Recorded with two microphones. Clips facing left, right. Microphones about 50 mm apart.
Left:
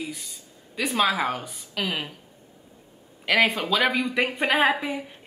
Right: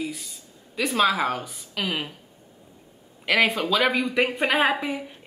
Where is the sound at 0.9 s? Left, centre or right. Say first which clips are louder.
Right 1 dB; centre.